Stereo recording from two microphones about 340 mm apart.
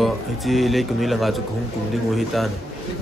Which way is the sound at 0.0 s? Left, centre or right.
Centre.